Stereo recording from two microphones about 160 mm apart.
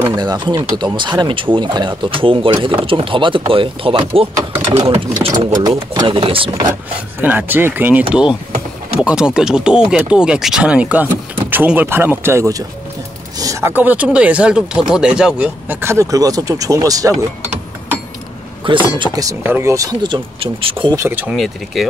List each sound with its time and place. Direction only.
0.1 s speech: 25° right (ahead or behind)
6.7 s speech: 15° right (ahead or behind)
18.6 s speech: 30° right (ahead or behind)
20.9 s speech: 15° right (ahead or behind)